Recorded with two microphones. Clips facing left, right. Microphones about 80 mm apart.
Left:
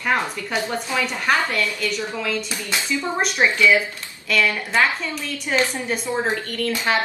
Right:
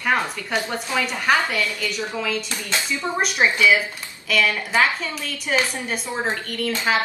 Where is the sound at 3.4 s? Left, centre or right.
Centre.